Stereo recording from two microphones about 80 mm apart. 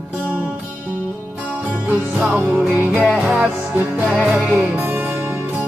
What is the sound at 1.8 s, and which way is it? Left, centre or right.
Music, right.